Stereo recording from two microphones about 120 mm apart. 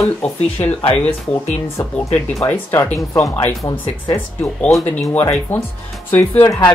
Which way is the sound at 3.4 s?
25° left (ahead or behind).